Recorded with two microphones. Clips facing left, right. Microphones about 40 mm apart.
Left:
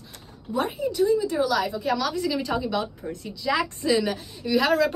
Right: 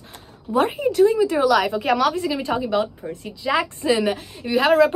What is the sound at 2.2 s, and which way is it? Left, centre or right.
A woman's voice, right.